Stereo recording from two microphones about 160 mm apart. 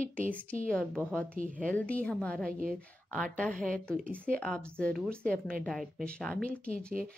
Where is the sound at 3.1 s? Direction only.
5° left (ahead or behind).